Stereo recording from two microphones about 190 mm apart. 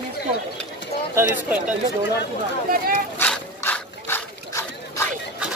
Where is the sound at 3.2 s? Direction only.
10° left (ahead or behind).